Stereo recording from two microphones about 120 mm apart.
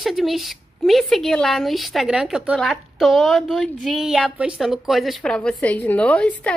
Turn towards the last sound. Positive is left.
turn(degrees=10)  # may be behind; listen again after turning